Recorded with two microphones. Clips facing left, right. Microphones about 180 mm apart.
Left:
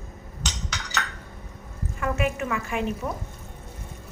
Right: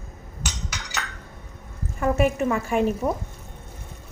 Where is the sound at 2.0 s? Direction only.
35° right (ahead or behind).